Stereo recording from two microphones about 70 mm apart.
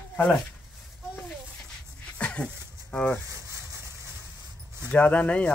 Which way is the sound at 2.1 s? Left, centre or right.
Centre.